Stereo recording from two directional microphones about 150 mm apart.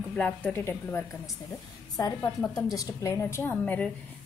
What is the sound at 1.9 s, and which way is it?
A woman's voice, 25° left (ahead or behind).